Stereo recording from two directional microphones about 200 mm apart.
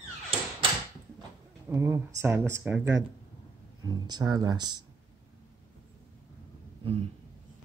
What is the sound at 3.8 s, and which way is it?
Speech, 20° right (ahead or behind).